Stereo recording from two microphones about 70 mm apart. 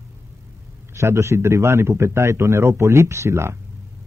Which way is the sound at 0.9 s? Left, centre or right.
Right.